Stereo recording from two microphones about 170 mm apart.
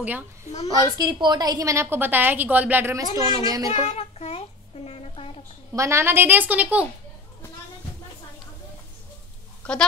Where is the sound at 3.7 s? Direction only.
40° left (ahead or behind).